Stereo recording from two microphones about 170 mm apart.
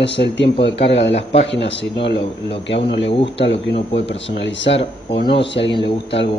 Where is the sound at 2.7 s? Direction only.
90° left.